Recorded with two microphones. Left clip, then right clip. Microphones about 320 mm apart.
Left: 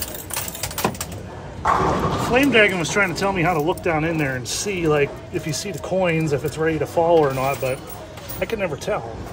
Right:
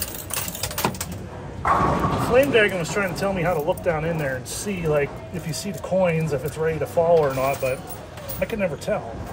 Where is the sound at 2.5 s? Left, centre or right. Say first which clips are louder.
Left 3 dB; left.